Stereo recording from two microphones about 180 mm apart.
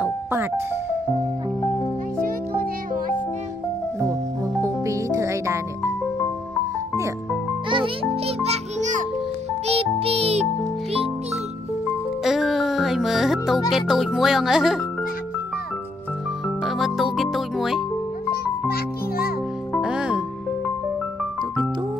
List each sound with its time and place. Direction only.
0.0 s music: 10° right (ahead or behind)
2.2 s music: 50° right (ahead or behind)
4.8 s music: 15° right (ahead or behind)
7.7 s music: 30° right (ahead or behind)
12.2 s music: centre (ahead or behind)
13.7 s a child's voice: centre (ahead or behind)
16.4 s music: centre (ahead or behind)
18.7 s music: 55° left (ahead or behind)
19.8 s music: 5° right (ahead or behind)